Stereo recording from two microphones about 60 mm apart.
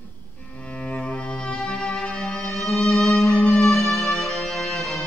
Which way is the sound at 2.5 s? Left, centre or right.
Centre.